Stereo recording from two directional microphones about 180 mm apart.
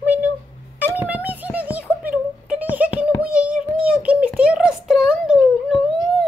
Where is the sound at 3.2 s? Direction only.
5° right (ahead or behind).